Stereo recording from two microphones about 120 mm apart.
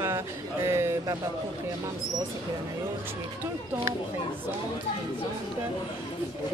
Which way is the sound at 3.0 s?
20° right (ahead or behind).